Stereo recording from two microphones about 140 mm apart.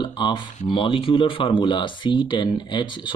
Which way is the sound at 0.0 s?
30° left (ahead or behind).